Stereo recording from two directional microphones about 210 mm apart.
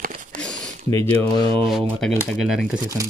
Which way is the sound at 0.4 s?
5° left (ahead or behind).